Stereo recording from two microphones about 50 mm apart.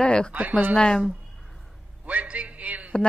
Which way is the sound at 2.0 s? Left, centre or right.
Right.